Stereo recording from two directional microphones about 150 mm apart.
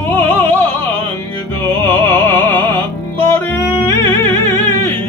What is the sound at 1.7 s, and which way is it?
Music, 15° left (ahead or behind).